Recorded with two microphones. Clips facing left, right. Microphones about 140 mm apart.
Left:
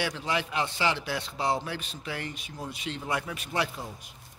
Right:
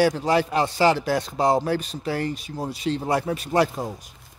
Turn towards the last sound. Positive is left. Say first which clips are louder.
# right 10 dB
turn(degrees=-40)  # may be behind; listen again after turning